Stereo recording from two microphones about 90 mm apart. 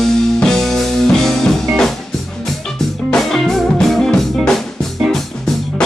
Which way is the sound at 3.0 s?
5° left (ahead or behind).